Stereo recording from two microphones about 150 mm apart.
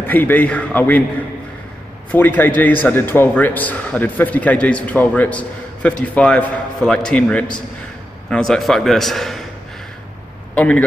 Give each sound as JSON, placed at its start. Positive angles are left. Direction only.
{"t": 0.0, "sound": "a man's voice", "side_deg": 10}
{"t": 2.0, "sound": "a man's voice", "side_deg": 10}
{"t": 10.5, "sound": "speech", "side_deg": 10}